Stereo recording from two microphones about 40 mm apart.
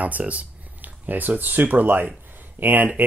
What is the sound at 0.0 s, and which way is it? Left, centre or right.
Speech, right.